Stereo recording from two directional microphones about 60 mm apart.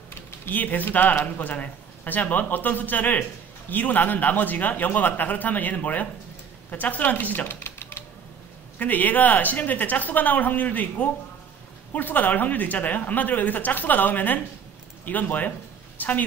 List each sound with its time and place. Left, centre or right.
0.5 s speech: left
7.4 s typewriter: left
8.7 s speech: left